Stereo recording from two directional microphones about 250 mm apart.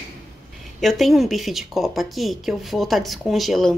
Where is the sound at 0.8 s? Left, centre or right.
Centre.